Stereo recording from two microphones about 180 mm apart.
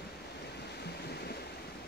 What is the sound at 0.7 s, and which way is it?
Waves, 65° left (ahead or behind).